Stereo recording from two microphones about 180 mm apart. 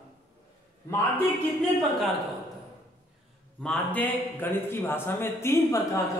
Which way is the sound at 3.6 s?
10° left (ahead or behind).